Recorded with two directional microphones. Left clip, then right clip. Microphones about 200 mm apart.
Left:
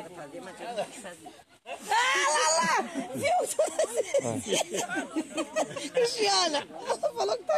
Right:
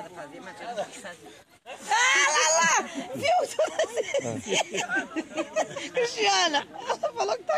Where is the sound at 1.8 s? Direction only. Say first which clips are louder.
Right 3 dB; 50° right (ahead or behind).